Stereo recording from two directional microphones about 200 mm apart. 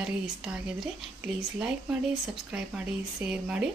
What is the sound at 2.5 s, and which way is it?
A woman's voice, 5° right (ahead or behind).